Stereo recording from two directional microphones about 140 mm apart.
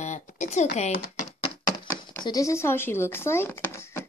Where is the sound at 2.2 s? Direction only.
25° left (ahead or behind).